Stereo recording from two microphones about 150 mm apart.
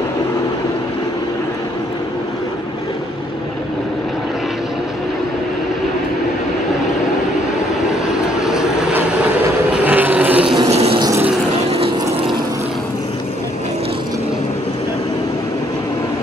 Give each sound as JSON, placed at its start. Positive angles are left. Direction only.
{"t": 8.1, "sound": "vehicle", "side_deg": -5}
{"t": 10.7, "sound": "a sound", "side_deg": -45}
{"t": 11.0, "sound": "vehicle", "side_deg": -20}
{"t": 11.7, "sound": "pump", "side_deg": -40}